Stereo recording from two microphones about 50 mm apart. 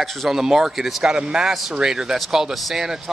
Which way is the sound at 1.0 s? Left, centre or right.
Centre.